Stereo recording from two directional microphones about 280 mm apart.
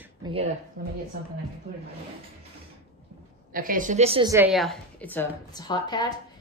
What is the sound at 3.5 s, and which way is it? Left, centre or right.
A woman's voice, right.